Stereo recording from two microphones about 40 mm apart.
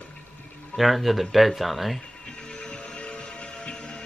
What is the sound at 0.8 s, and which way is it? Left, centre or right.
Speech, centre.